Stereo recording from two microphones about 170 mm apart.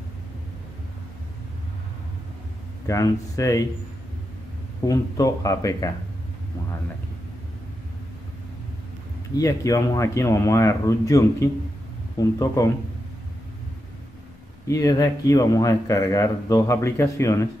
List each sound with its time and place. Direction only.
2.9 s speech: 20° left (ahead or behind)
4.8 s speech: 20° left (ahead or behind)
9.4 s a man's voice: 20° left (ahead or behind)
14.7 s speech: 20° left (ahead or behind)